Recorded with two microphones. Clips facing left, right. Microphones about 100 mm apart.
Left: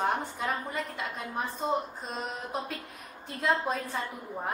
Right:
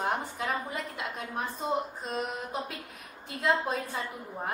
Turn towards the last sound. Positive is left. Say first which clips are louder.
# even
turn(degrees=0)  # may be behind; listen again after turning